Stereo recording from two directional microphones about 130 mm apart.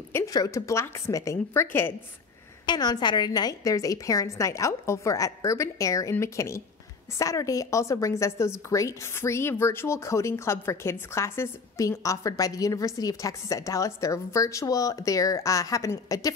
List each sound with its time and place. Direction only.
0.1 s a woman's voice: 25° left (ahead or behind)
2.6 s a woman's voice: 35° left (ahead or behind)